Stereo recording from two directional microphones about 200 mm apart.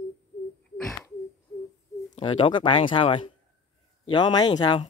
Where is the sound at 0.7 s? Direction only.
Centre (ahead or behind).